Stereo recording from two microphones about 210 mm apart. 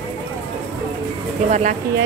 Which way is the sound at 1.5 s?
35° right (ahead or behind).